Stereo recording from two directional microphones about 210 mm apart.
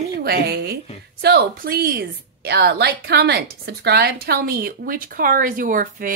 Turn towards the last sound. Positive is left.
turn(degrees=-40)  # may be behind; listen again after turning